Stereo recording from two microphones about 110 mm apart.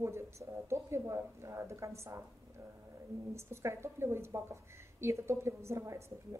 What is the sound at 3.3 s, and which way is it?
A woman's voice, 25° right (ahead or behind).